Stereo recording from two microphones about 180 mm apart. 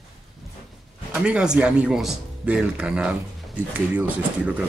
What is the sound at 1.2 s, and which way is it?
Speech, 5° right (ahead or behind).